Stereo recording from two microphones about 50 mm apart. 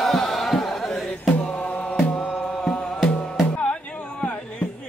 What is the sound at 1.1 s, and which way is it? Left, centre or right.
Mantra, left.